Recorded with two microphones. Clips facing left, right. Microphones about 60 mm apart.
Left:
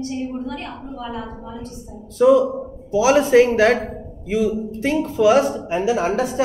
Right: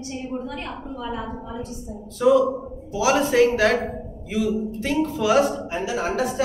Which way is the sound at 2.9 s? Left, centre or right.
Left.